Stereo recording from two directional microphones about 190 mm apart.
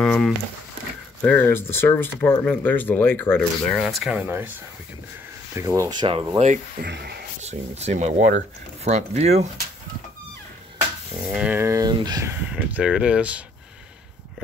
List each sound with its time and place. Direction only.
0.0 s speech: 5° left (ahead or behind)
5.5 s speech: 15° right (ahead or behind); by 6.6 s 35° right (ahead or behind)
6.8 s speech: 55° right (ahead or behind)
7.4 s speech: 35° right (ahead or behind)
11.2 s speech: 5° right (ahead or behind)
12.4 s speech: 5° right (ahead or behind)